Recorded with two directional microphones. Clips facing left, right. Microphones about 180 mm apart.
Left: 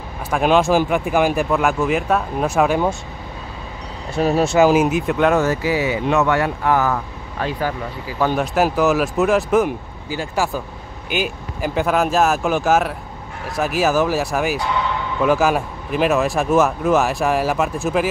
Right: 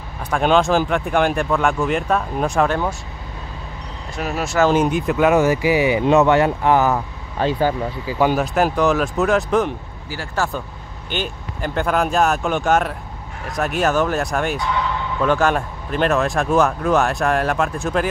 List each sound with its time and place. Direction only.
0.3 s speech: 5° left (ahead or behind)
4.2 s speech: 30° left (ahead or behind)
4.6 s speech: 5° left (ahead or behind)
5.3 s speech: 15° right (ahead or behind)
8.4 s speech: centre (ahead or behind)
10.0 s speech: 15° left (ahead or behind)